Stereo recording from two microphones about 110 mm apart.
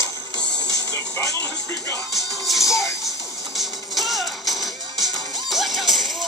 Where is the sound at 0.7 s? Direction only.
25° left (ahead or behind).